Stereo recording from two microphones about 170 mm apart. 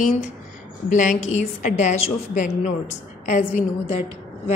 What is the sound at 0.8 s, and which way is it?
A woman's voice, 50° left (ahead or behind).